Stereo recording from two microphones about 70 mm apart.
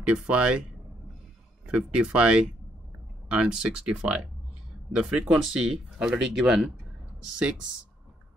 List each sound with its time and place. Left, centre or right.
0.1 s speech: centre
1.7 s speech: centre